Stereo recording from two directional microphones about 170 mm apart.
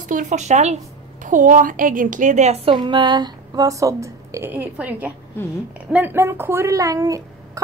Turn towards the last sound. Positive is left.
turn(degrees=-20)  # may be behind; listen again after turning